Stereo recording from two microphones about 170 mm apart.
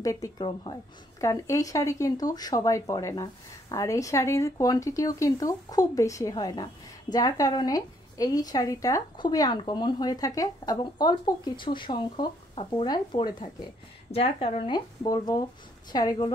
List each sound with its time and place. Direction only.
0.0 s a woman's voice: 20° left (ahead or behind)